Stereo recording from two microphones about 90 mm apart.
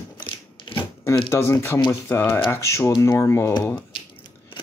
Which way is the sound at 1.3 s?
30° left (ahead or behind).